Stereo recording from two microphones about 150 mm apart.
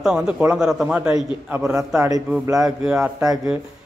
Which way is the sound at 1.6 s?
20° right (ahead or behind).